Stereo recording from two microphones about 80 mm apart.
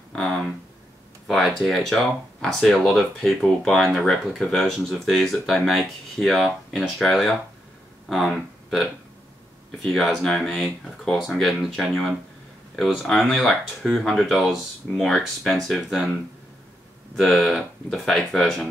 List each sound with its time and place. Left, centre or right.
0.1 s speech: centre
8.4 s a sound: centre
9.7 s speech: centre
17.1 s speech: centre